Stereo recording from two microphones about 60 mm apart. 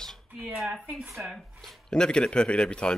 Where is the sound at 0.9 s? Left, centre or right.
Centre.